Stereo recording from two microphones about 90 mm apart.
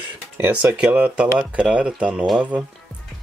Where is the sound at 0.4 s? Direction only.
15° right (ahead or behind).